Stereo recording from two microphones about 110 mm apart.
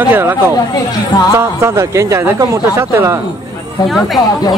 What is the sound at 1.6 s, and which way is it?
Speech, 25° right (ahead or behind).